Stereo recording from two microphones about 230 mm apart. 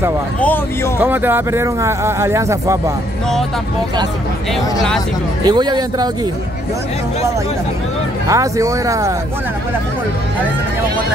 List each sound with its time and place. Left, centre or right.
0.4 s speech: centre
1.0 s speech: centre
5.5 s speech: centre
8.3 s speech: centre